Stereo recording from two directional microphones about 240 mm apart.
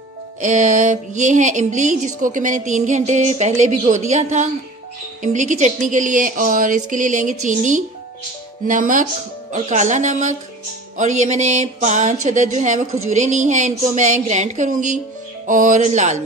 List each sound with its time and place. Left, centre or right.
0.4 s speech: right